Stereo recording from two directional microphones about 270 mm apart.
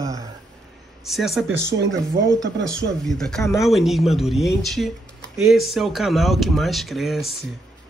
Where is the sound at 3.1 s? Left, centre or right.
Centre.